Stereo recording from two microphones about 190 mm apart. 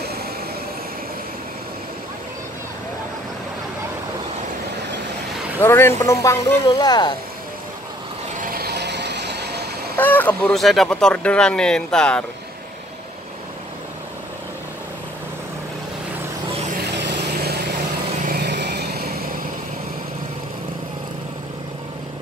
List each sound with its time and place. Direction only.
5.6 s speech: 15° left (ahead or behind)
8.4 s vehicle: 50° right (ahead or behind)
9.9 s speech: 10° left (ahead or behind)
16.8 s vehicle: 65° right (ahead or behind)